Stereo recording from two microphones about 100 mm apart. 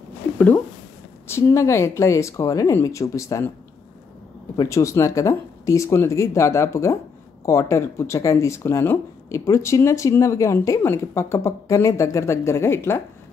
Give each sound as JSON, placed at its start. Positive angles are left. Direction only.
{"t": 1.2, "sound": "speech", "side_deg": 30}
{"t": 4.6, "sound": "speech", "side_deg": 30}